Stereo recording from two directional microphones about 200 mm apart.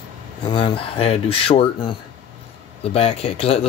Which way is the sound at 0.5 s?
25° left (ahead or behind).